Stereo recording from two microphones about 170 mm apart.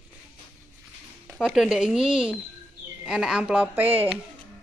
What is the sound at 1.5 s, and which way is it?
A woman's voice, 5° right (ahead or behind).